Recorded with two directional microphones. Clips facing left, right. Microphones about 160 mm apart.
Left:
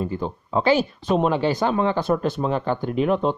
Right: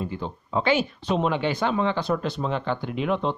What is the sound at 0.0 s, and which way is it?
Speech, 45° left (ahead or behind).